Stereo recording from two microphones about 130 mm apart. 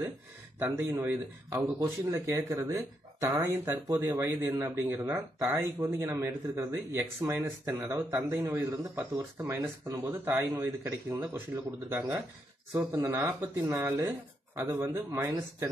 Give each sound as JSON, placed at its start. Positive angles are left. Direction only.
{"t": 0.6, "sound": "speech", "side_deg": -15}
{"t": 1.6, "sound": "speech", "side_deg": -30}